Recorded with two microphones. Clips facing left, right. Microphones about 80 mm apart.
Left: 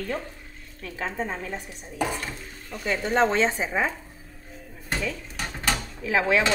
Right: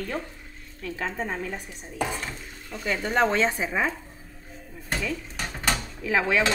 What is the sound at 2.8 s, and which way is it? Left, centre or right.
A woman's voice, left.